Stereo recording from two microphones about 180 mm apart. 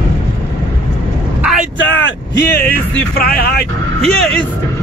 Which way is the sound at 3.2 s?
60° left (ahead or behind).